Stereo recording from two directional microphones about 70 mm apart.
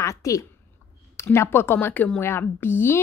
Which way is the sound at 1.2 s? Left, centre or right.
Left.